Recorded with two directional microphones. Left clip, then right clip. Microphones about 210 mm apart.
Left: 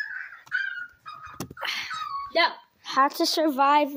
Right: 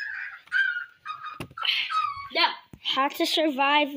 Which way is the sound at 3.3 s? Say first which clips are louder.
Right 1 dB; 10° left (ahead or behind).